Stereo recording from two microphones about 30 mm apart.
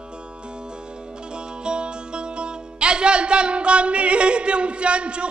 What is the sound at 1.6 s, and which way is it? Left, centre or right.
Music, right.